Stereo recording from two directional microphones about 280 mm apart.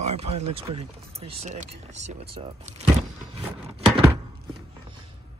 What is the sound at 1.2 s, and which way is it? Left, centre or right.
Speech, right.